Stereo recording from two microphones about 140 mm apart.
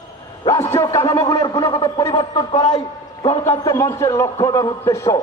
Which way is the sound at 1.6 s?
35° left (ahead or behind).